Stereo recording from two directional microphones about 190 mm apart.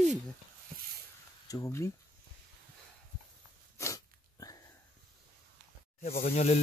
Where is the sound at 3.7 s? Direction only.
15° left (ahead or behind).